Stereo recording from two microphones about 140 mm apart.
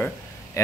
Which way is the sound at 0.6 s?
20° left (ahead or behind).